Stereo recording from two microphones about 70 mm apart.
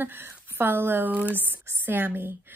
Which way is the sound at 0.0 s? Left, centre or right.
Right.